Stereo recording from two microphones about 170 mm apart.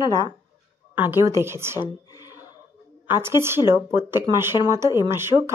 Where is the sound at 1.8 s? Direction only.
20° left (ahead or behind).